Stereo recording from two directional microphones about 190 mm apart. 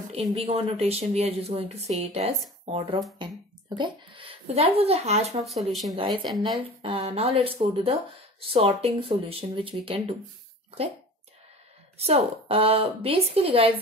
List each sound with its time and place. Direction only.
0.1 s speech: 30° right (ahead or behind)
5.4 s speech: centre (ahead or behind)
6.8 s speech: 30° right (ahead or behind)
12.0 s speech: 30° right (ahead or behind)